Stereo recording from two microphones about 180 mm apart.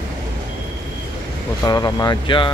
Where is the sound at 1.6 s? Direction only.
20° left (ahead or behind).